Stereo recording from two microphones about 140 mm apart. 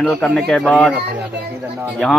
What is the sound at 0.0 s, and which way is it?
Speech, centre (ahead or behind).